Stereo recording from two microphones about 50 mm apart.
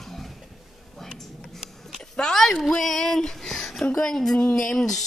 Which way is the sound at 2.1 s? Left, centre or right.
Centre.